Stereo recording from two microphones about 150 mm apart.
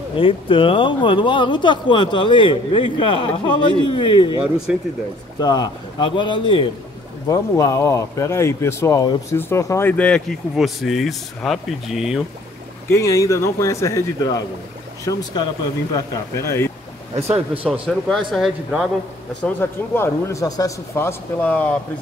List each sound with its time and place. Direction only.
0.1 s speech: 35° left (ahead or behind)
4.7 s speech: 10° right (ahead or behind)
5.4 s a man's voice: 30° left (ahead or behind); by 12.2 s 5° right (ahead or behind)
12.8 s a man's voice: 20° left (ahead or behind)
17.8 s speech: centre (ahead or behind)
19.4 s speech: 15° left (ahead or behind)